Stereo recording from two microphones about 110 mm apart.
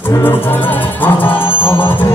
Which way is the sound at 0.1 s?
20° left (ahead or behind).